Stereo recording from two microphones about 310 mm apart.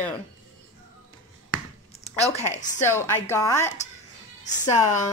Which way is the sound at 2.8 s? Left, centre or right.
Centre.